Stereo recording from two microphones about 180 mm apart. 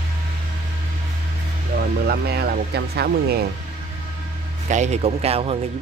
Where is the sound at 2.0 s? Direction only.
60° right (ahead or behind).